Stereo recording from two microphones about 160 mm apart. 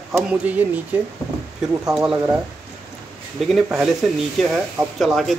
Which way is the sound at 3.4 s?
Centre (ahead or behind).